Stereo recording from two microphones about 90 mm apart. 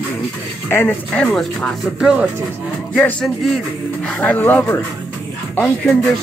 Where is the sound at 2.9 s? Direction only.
15° left (ahead or behind).